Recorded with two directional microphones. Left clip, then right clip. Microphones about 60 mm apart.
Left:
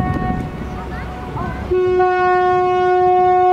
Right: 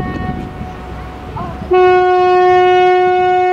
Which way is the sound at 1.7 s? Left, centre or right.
Right.